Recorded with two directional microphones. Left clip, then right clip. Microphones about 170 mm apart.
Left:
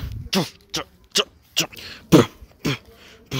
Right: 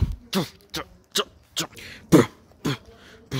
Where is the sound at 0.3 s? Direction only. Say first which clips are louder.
Left 5 dB; 15° left (ahead or behind).